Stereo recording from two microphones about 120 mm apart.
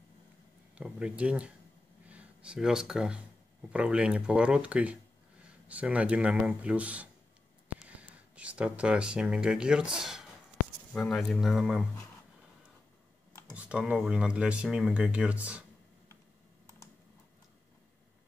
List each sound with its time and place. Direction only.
0.7 s speech: 10° right (ahead or behind)
13.3 s computer keyboard: 25° left (ahead or behind)
13.6 s speech: 10° right (ahead or behind)